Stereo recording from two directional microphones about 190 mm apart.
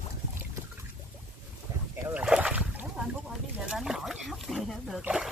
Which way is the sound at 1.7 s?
15° right (ahead or behind).